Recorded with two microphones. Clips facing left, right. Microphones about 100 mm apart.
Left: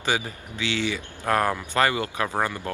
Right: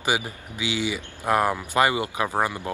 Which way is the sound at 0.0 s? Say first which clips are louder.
Right 1 dB; 15° right (ahead or behind).